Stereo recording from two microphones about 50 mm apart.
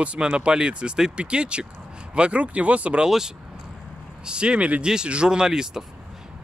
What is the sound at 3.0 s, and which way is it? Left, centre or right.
Speech, centre.